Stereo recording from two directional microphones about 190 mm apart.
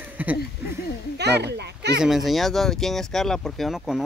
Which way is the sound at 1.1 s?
60° right (ahead or behind).